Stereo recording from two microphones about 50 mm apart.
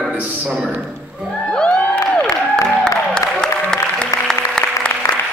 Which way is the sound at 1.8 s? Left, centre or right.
Left.